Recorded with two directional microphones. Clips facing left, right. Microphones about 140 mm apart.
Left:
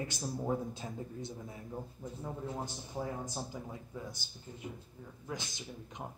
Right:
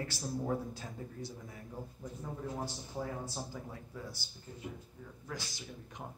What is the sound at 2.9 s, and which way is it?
A man's voice, 15° left (ahead or behind).